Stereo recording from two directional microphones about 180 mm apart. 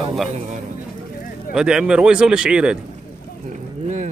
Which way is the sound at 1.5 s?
5° right (ahead or behind).